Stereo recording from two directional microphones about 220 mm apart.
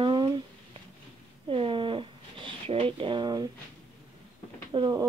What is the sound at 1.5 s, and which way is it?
Speech, 25° right (ahead or behind).